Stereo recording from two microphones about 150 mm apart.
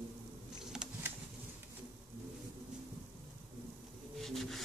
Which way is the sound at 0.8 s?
5° right (ahead or behind).